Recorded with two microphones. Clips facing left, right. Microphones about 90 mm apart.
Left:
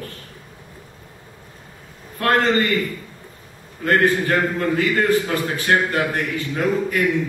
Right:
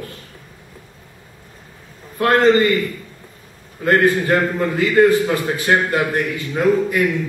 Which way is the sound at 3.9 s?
15° right (ahead or behind).